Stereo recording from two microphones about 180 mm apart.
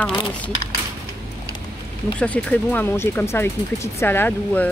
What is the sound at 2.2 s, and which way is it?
Speech, 10° left (ahead or behind).